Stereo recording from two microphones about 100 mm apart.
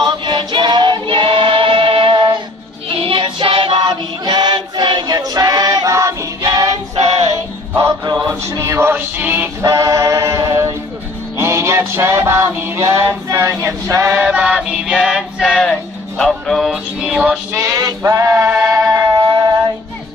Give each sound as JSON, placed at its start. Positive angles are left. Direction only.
{"t": 0.0, "sound": "music", "side_deg": -50}
{"t": 2.9, "sound": "child singing", "side_deg": -60}
{"t": 7.2, "sound": "music", "side_deg": -30}
{"t": 9.7, "sound": "a capella", "side_deg": -35}
{"t": 11.3, "sound": "music", "side_deg": -25}
{"t": 14.1, "sound": "music", "side_deg": -10}
{"t": 16.7, "sound": "music", "side_deg": -10}
{"t": 17.5, "sound": "male singing", "side_deg": -25}
{"t": 17.8, "sound": "music", "side_deg": -30}
{"t": 18.6, "sound": "music", "side_deg": 0}